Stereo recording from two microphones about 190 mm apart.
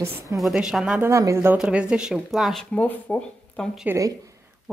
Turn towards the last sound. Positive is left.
turn(degrees=-15)  # may be behind; listen again after turning